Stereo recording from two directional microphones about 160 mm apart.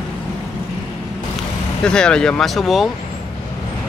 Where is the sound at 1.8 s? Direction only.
5° left (ahead or behind).